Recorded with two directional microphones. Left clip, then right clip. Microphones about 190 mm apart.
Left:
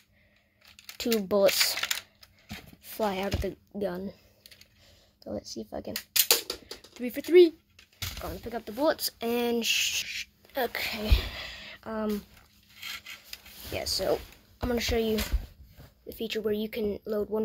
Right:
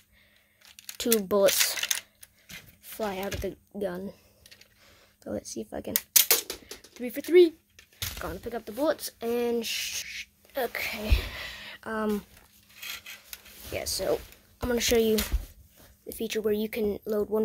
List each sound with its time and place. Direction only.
0.7 s speech: 10° right (ahead or behind)
3.0 s speech: 5° left (ahead or behind)
4.8 s speech: 15° right (ahead or behind)
6.9 s speech: centre (ahead or behind)
8.2 s speech: 20° right (ahead or behind)
8.5 s speech: centre (ahead or behind); by 12.3 s 15° right (ahead or behind)
13.7 s speech: 5° left (ahead or behind)
14.9 s speech: 25° right (ahead or behind)
16.1 s speech: 15° right (ahead or behind)